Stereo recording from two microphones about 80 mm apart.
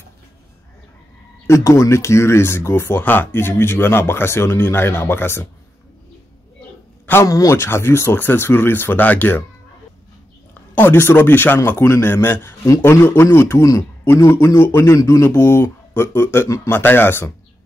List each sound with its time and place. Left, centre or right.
1.5 s speech: left
7.2 s speech: left
10.7 s speech: left